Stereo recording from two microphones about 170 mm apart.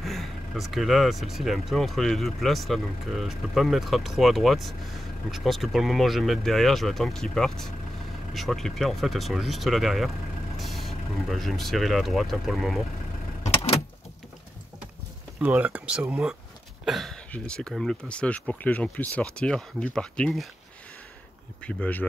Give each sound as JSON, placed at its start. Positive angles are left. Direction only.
{"t": 0.0, "sound": "speech", "side_deg": 0}
{"t": 13.4, "sound": "vehicle", "side_deg": 35}
{"t": 15.3, "sound": "speech", "side_deg": -10}
{"t": 21.6, "sound": "speech", "side_deg": 10}